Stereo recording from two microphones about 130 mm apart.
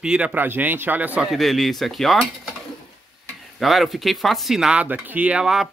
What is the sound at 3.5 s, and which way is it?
Speech, centre (ahead or behind).